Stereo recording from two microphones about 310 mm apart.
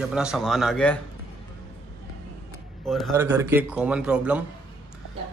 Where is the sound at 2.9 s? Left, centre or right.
Centre.